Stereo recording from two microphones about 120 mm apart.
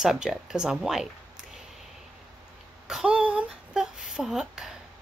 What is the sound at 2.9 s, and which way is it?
A woman's voice, 5° right (ahead or behind).